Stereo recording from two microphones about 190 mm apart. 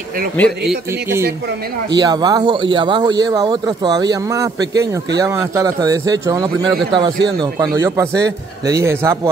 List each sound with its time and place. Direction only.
2.0 s speech: 20° right (ahead or behind)